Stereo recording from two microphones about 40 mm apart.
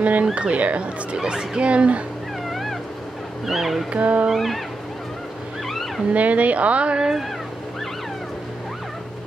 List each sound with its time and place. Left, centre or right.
0.0 s speech: right
3.4 s a sound: centre
3.9 s speech: right
4.3 s a sound: centre
6.1 s speech: right
7.0 s speech: centre